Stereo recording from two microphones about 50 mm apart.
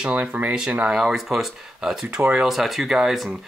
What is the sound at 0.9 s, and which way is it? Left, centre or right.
Speech, centre.